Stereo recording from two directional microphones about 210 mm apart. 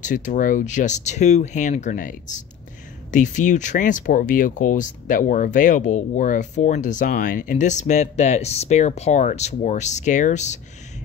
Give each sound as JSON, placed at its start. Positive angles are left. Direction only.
{"t": 0.0, "sound": "speech", "side_deg": 35}